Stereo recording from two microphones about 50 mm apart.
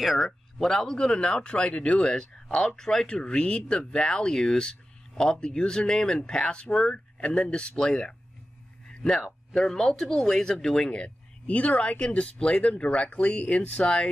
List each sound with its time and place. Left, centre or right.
0.0 s speech: centre
8.8 s a sound: centre
9.5 s speech: centre
10.9 s speech: left